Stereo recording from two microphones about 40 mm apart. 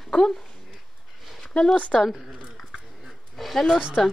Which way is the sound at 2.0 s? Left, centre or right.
Centre.